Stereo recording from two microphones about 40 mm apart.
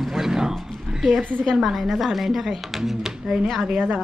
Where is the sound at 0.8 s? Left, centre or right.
Centre.